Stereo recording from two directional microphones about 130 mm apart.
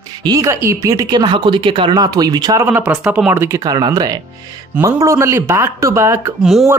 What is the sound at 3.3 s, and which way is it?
Speech, 20° right (ahead or behind).